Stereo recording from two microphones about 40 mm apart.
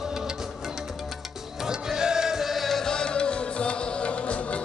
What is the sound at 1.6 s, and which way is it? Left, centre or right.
Music, centre.